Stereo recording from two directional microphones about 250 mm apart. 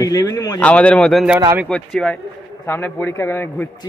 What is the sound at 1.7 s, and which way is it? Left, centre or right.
A man's voice, centre.